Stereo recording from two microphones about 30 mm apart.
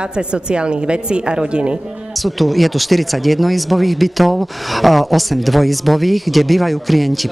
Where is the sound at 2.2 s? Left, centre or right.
Centre.